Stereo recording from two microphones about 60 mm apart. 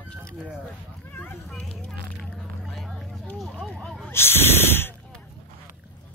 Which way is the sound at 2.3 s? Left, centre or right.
Centre.